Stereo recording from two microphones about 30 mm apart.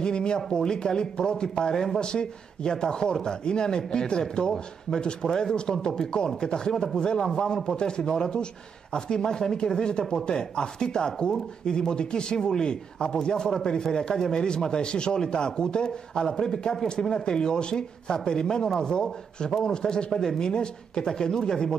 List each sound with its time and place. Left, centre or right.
0.0 s speech: left
1.7 s speech: centre
2.0 s speech: left
21.1 s speech: centre